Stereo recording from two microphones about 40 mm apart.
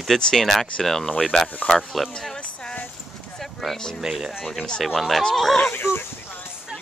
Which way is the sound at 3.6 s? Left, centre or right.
Centre.